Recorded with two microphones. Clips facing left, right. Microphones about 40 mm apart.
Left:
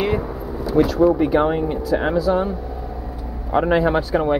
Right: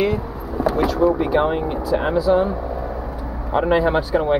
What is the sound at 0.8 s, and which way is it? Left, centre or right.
Speech, centre.